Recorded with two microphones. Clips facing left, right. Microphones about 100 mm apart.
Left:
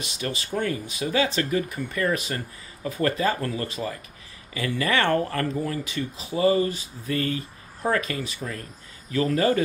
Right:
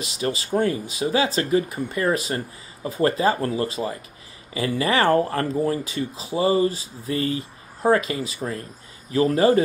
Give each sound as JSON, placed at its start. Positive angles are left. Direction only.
{"t": 0.2, "sound": "speech", "side_deg": -25}